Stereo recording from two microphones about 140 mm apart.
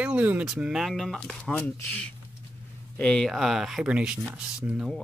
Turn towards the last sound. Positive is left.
turn(degrees=0)  # may be behind; listen again after turning